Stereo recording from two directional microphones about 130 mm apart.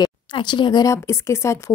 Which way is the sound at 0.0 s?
35° left (ahead or behind).